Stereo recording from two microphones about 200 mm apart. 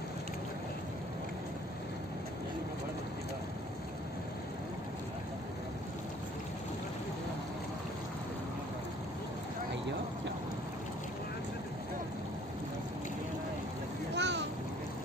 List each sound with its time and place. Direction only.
14.1 s boat: 60° right (ahead or behind)